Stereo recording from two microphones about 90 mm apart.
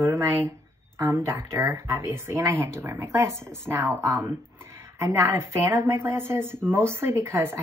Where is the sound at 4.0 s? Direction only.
35° right (ahead or behind).